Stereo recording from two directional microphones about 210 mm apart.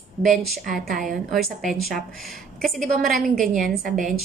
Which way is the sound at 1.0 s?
Centre (ahead or behind).